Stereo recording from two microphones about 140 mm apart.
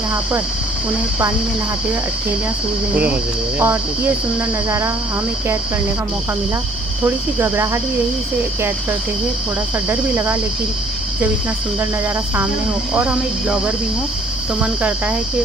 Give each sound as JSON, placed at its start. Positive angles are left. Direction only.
{"t": 2.9, "sound": "cricket", "side_deg": -10}
{"t": 7.3, "sound": "cricket", "side_deg": -15}
{"t": 9.8, "sound": "cricket", "side_deg": -15}
{"t": 12.9, "sound": "cricket", "side_deg": -5}